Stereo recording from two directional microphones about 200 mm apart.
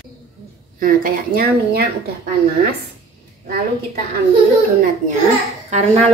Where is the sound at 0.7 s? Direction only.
45° right (ahead or behind).